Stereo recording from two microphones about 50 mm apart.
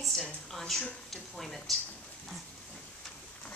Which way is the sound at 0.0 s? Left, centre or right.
Centre.